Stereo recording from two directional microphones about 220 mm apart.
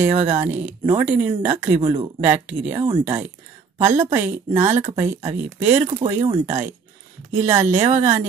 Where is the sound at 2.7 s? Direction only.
20° right (ahead or behind).